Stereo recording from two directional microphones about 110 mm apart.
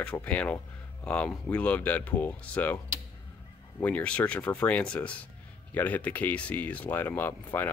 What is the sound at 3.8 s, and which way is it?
Speech, 15° left (ahead or behind).